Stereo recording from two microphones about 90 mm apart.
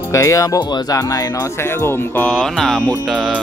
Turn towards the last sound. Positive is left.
turn(degrees=0)  # may be behind; listen again after turning